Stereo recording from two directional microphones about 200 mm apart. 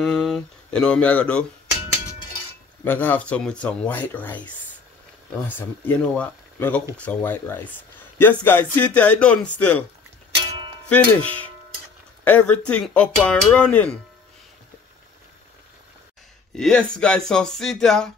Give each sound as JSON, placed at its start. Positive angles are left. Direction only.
{"t": 0.0, "sound": "speech", "side_deg": 0}
{"t": 2.8, "sound": "speech", "side_deg": 10}
{"t": 10.9, "sound": "speech", "side_deg": 5}
{"t": 16.5, "sound": "speech", "side_deg": 5}